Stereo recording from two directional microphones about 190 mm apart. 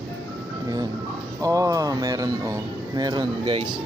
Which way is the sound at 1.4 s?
15° right (ahead or behind).